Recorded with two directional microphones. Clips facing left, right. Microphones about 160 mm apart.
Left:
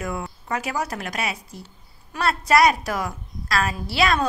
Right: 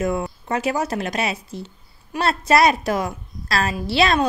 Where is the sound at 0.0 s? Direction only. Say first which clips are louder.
Right 7 dB; 25° right (ahead or behind).